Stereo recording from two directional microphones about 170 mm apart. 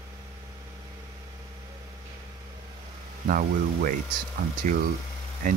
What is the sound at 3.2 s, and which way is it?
Speech, 55° right (ahead or behind).